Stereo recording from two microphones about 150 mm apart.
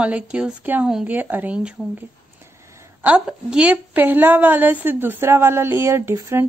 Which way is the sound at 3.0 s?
10° right (ahead or behind).